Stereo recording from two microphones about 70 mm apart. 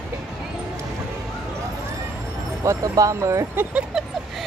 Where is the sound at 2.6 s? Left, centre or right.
Right.